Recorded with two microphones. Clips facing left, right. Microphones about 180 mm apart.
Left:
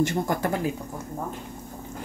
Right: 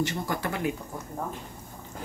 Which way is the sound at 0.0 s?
45° left (ahead or behind).